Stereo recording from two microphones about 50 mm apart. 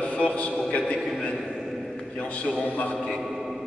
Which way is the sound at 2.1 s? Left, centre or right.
Left.